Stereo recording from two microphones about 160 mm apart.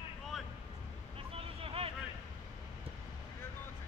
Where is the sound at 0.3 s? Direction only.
Centre (ahead or behind).